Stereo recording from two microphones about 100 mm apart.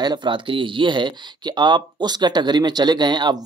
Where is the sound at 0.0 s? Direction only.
45° right (ahead or behind).